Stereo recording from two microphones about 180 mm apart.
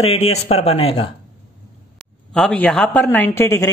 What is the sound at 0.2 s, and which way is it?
Speech, 35° left (ahead or behind).